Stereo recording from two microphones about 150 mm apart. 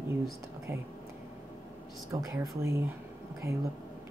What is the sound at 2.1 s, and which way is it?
Speech, 15° right (ahead or behind).